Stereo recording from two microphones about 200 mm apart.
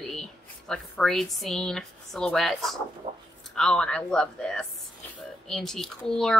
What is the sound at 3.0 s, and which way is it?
Speech, 30° right (ahead or behind).